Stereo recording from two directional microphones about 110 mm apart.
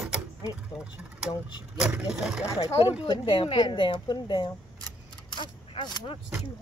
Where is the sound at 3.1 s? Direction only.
50° left (ahead or behind).